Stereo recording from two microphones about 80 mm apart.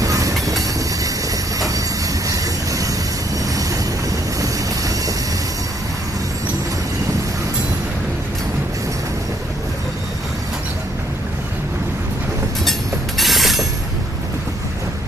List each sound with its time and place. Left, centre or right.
0.0 s train: right
2.2 s vehicle: right
4.4 s vehicle: right
13.2 s train: centre